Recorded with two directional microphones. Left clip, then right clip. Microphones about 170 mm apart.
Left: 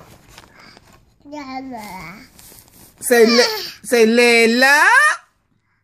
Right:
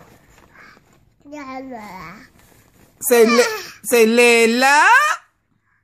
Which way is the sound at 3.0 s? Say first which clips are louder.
Left 1 dB; 10° right (ahead or behind).